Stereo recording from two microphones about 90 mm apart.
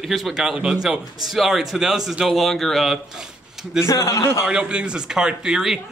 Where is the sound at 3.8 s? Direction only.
35° left (ahead or behind).